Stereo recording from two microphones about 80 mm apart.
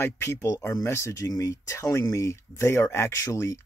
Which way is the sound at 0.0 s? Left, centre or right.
Left.